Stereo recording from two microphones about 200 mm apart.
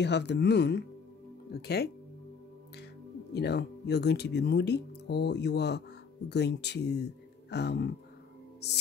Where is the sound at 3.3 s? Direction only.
55° left (ahead or behind).